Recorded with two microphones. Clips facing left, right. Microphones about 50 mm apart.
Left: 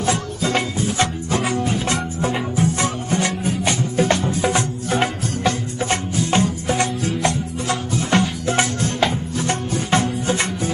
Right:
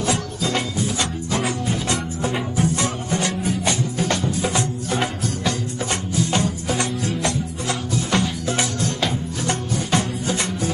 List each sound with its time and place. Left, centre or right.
0.0 s music: left